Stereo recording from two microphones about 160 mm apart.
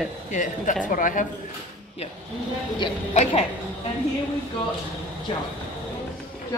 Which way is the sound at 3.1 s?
45° left (ahead or behind).